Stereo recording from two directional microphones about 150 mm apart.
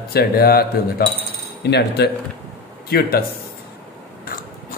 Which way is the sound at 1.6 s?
90° left.